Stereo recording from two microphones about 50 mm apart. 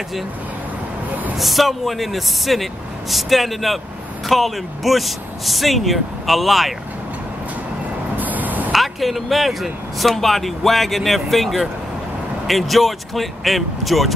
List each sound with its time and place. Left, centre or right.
1.4 s speech: centre
8.2 s a sound: right
8.7 s speech: centre